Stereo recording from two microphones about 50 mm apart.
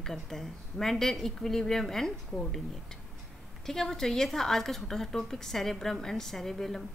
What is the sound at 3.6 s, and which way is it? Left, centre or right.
A woman's voice, centre.